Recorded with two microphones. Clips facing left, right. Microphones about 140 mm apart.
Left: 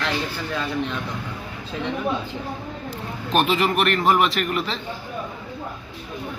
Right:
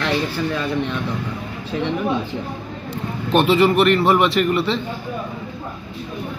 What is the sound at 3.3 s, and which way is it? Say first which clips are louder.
Speech: right 5 dB; centre (ahead or behind).